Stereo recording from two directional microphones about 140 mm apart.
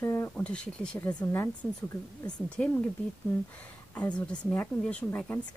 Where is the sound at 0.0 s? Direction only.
20° left (ahead or behind).